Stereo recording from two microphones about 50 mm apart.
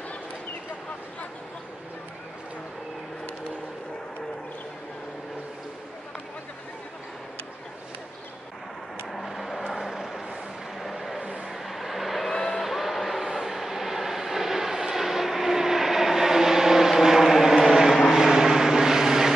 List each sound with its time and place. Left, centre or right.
9.1 s vehicle: centre
11.2 s vehicle: right
11.5 s vehicle: centre